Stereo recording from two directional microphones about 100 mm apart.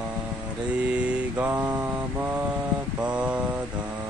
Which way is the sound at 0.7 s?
10° right (ahead or behind).